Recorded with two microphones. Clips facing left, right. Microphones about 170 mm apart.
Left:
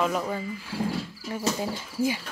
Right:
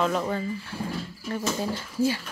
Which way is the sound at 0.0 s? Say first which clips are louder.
Right 1 dB; 5° left (ahead or behind).